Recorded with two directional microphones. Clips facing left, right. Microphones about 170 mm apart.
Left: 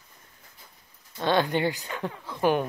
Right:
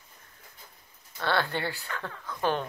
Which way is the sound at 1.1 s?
15° left (ahead or behind).